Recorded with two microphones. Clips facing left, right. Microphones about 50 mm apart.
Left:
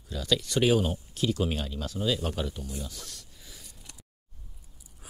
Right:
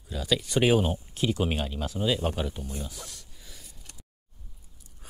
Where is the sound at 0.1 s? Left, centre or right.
Centre.